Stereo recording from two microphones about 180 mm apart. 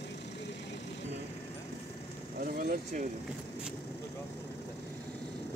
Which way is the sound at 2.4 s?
50° right (ahead or behind).